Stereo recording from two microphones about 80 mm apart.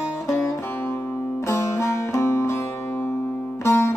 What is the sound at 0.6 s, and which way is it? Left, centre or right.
Music, left.